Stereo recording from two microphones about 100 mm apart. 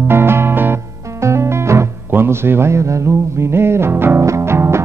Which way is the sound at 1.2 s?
30° right (ahead or behind).